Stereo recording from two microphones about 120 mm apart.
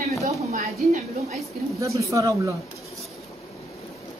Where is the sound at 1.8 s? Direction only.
25° right (ahead or behind).